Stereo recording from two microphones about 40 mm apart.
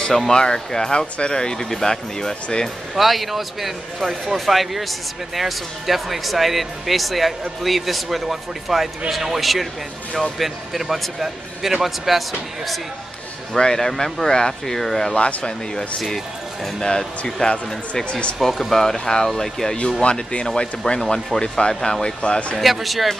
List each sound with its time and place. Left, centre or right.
0.3 s speech: centre
3.0 s speech: centre
13.5 s speech: centre
15.1 s speech: left
16.8 s speech: left
18.4 s speech: centre
20.0 s speech: left
22.6 s speech: centre